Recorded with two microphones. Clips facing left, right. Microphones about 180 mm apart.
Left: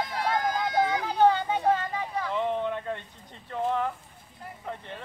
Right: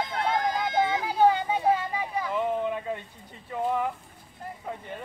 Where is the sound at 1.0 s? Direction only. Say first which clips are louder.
Even; 5° right (ahead or behind).